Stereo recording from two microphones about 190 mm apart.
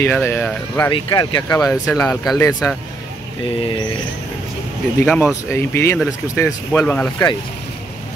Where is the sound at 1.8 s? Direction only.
5° left (ahead or behind).